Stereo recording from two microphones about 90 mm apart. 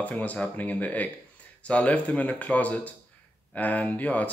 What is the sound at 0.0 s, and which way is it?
Speech, 15° left (ahead or behind).